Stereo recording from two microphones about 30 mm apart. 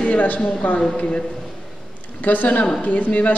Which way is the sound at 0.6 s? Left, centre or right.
Left.